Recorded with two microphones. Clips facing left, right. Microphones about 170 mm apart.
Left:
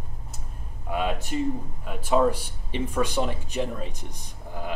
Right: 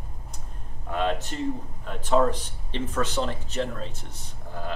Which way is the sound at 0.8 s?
10° left (ahead or behind).